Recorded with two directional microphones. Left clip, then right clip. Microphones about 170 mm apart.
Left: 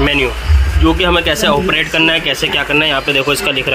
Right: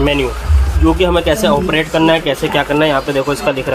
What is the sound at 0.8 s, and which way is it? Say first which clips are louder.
Speech: even; 15° right (ahead or behind).